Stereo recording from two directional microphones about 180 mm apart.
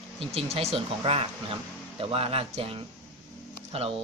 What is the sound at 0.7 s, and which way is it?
Speech, 35° right (ahead or behind).